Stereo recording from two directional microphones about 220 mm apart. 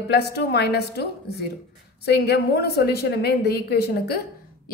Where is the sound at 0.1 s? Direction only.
50° left (ahead or behind).